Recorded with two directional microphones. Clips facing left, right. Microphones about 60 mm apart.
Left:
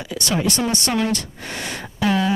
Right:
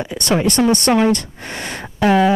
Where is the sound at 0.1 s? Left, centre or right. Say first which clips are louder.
Right 1 dB; right.